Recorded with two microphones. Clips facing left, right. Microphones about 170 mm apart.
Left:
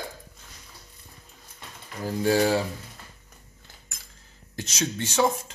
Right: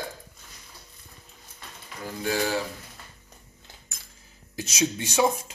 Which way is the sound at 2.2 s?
35° left (ahead or behind).